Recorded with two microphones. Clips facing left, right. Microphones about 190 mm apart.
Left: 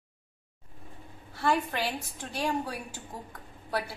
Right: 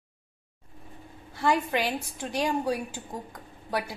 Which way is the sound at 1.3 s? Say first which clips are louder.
Right 3 dB; 15° right (ahead or behind).